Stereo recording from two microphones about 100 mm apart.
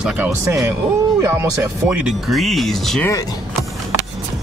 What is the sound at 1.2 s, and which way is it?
Speech, 25° right (ahead or behind).